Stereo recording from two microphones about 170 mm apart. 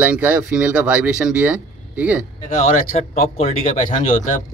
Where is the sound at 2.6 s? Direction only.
45° left (ahead or behind).